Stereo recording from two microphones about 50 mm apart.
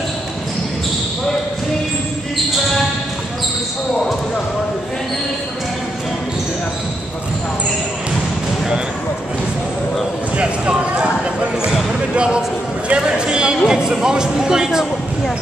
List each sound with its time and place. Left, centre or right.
2.3 s basketball bounce: centre
10.3 s basketball bounce: right
12.2 s a sound: centre